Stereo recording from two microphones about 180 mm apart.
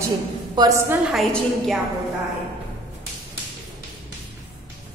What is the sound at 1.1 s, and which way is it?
Speech, centre (ahead or behind).